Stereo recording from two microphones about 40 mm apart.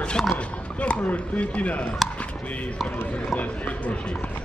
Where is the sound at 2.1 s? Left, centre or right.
Left.